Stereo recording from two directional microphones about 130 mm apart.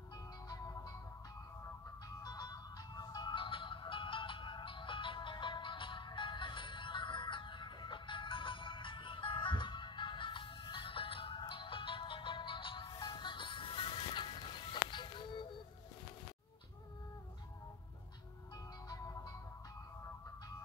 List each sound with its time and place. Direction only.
0.5 s music: 30° left (ahead or behind)
2.2 s music: 30° left (ahead or behind)
18.9 s music: 30° left (ahead or behind)